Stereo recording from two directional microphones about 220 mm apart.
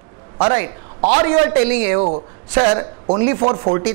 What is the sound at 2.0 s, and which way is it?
Speech, 30° right (ahead or behind).